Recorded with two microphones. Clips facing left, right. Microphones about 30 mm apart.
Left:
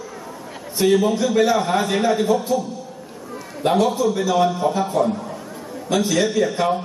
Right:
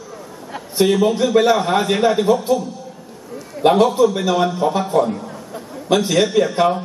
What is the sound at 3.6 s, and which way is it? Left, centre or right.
A man's voice, right.